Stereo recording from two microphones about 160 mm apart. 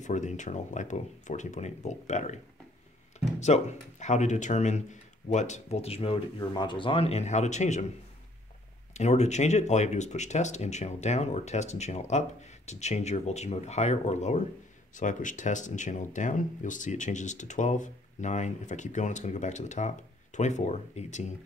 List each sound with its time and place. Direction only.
0.0 s speech: 50° left (ahead or behind)
8.9 s speech: 45° left (ahead or behind)